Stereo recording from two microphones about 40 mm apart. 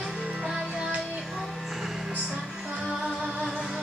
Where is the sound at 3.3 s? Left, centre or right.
Centre.